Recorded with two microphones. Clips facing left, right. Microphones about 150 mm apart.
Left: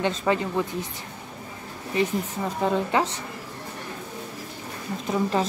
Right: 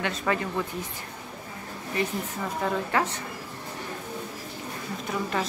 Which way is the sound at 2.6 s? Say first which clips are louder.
Left 4 dB; 20° left (ahead or behind).